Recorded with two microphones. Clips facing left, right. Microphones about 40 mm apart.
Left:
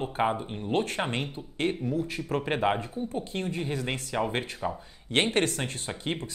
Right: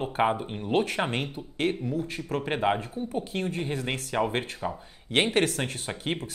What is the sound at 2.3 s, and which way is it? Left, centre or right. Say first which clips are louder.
Speech: right 1 dB; centre.